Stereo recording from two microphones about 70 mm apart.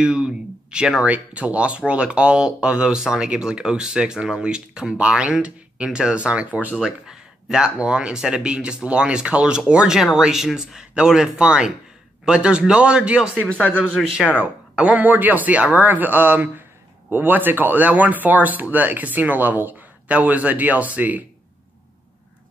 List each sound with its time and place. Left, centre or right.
0.0 s speech: centre
7.1 s speech: centre